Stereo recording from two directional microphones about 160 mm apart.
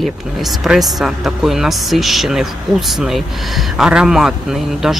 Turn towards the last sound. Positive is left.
turn(degrees=0)  # may be behind; listen again after turning